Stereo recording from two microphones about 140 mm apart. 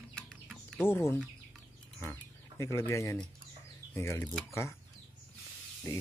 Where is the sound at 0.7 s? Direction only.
15° left (ahead or behind).